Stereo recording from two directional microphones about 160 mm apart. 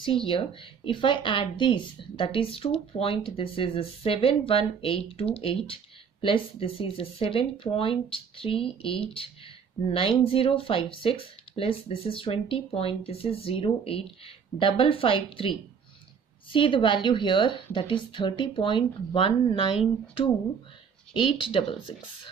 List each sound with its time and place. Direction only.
0.0 s a woman's voice: 35° left (ahead or behind)
16.5 s a woman's voice: 30° left (ahead or behind)
21.1 s a woman's voice: 35° left (ahead or behind)